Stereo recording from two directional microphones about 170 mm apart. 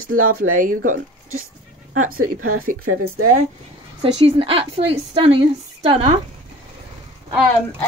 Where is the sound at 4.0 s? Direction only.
35° right (ahead or behind).